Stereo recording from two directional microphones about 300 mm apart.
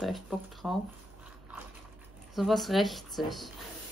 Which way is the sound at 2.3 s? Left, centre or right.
Centre.